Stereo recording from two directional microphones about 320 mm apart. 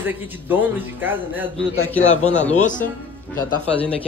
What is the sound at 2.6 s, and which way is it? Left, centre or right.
Speech, left.